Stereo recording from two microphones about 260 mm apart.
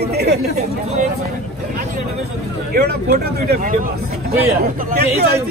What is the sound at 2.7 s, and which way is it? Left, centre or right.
Speech, right.